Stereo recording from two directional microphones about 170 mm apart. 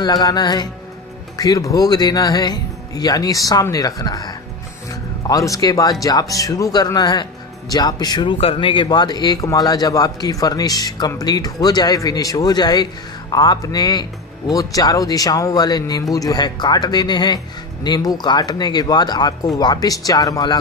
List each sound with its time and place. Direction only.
0.0 s speech: 25° left (ahead or behind)